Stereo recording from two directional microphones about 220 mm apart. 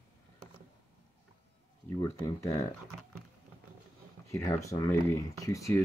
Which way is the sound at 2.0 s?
20° left (ahead or behind).